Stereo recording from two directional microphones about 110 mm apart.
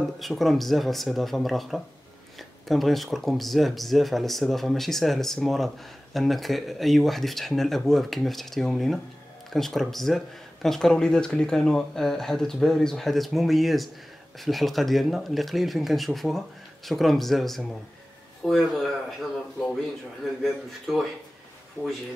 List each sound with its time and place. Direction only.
0.2 s speech: centre (ahead or behind)
20.9 s speech: centre (ahead or behind)
21.8 s speech: 20° left (ahead or behind)